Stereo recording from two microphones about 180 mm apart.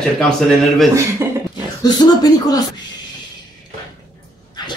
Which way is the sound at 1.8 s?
20° left (ahead or behind).